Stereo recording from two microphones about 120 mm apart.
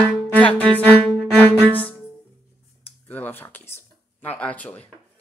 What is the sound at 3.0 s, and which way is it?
Speech, 15° left (ahead or behind).